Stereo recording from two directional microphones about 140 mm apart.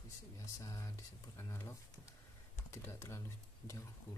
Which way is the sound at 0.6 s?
25° left (ahead or behind).